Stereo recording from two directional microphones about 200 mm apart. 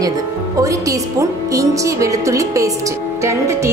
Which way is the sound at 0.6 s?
15° right (ahead or behind).